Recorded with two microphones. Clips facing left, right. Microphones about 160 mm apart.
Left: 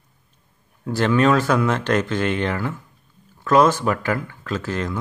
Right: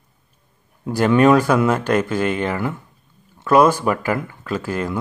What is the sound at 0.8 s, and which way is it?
Speech, 10° right (ahead or behind).